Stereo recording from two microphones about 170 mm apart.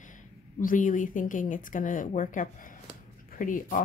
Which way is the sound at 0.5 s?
50° left (ahead or behind).